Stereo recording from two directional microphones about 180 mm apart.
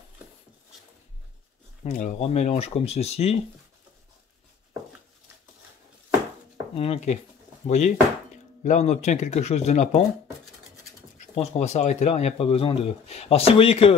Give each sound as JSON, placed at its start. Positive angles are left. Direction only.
{"t": 1.9, "sound": "speech", "side_deg": 45}
{"t": 6.7, "sound": "speech", "side_deg": 35}
{"t": 11.1, "sound": "speech", "side_deg": 40}